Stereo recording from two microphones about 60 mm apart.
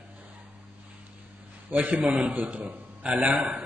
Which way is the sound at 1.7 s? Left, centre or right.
Right.